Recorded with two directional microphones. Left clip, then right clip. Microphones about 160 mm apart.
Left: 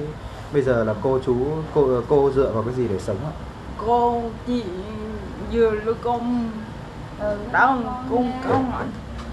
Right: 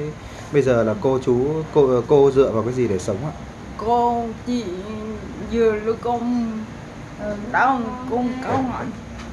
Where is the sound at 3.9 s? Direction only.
30° right (ahead or behind).